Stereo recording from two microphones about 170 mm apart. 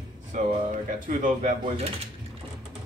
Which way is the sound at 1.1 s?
45° right (ahead or behind).